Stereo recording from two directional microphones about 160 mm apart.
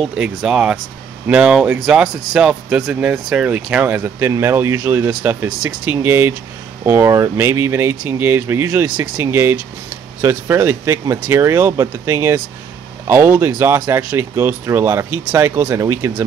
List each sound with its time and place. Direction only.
0.0 s speech: 5° right (ahead or behind)